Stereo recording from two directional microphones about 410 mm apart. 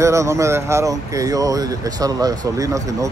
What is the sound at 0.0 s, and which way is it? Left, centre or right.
Speech, centre.